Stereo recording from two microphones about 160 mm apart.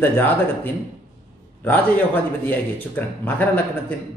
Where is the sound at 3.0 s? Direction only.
10° left (ahead or behind).